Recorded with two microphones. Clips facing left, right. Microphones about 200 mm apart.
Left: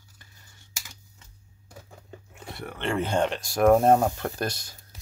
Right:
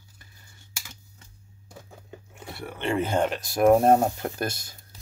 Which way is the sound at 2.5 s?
5° right (ahead or behind).